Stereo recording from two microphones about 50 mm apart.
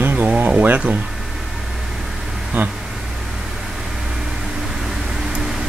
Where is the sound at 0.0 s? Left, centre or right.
Right.